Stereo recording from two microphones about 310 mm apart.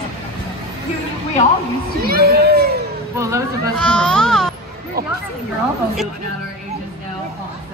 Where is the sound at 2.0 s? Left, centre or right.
Right.